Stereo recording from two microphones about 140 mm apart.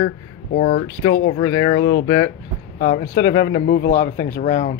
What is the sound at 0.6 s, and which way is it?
Speech, 50° left (ahead or behind).